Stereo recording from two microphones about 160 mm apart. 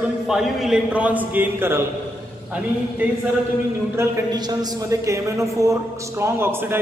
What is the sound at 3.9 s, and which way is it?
A man's voice, 25° right (ahead or behind).